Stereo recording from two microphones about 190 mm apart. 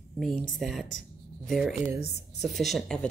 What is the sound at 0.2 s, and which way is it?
A woman's voice, 5° left (ahead or behind).